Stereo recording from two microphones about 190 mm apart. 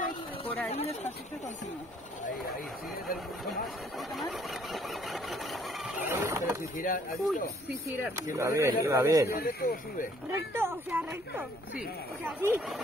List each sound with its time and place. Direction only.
0.7 s speech: 35° left (ahead or behind)
4.7 s a sound: centre (ahead or behind)
6.0 s speech: 10° right (ahead or behind)
6.8 s speech: 45° left (ahead or behind)
8.0 s speech: 15° right (ahead or behind)
9.4 s speech: 55° left (ahead or behind)
10.5 s speech: 10° right (ahead or behind)